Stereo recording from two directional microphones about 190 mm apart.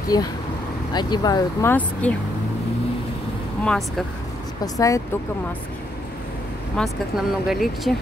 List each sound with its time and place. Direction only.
0.1 s speech: 20° left (ahead or behind)
4.7 s speech: 15° left (ahead or behind)
6.8 s speech: centre (ahead or behind)